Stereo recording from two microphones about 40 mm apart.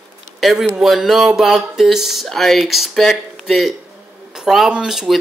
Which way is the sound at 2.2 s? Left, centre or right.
Centre.